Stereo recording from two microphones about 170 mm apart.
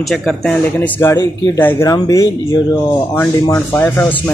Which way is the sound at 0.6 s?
15° left (ahead or behind).